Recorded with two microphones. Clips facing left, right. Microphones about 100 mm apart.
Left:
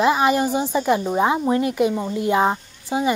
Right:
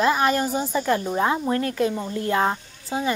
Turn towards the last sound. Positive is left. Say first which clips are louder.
# left 4 dB
turn(degrees=15)  # may be behind; listen again after turning